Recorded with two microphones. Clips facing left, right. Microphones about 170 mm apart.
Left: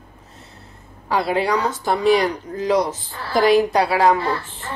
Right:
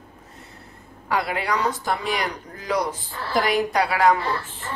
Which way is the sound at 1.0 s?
30° left (ahead or behind).